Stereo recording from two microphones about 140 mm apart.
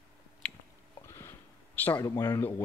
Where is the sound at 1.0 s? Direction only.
20° left (ahead or behind).